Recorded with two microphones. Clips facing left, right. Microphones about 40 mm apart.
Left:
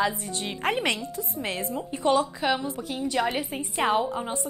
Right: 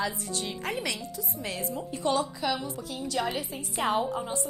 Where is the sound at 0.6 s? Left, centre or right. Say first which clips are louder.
Left 10 dB; left.